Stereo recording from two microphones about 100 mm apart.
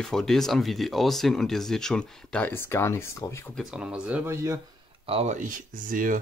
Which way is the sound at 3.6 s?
5° right (ahead or behind).